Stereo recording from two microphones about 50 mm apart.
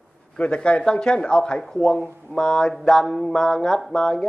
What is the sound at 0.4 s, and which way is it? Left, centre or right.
A man's voice, left.